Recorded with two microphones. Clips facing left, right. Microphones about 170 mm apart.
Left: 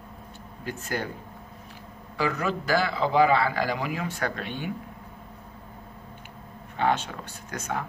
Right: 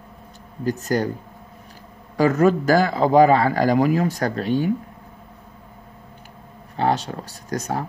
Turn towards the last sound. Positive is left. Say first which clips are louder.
# right 6 dB
turn(degrees=-35)  # may be behind; listen again after turning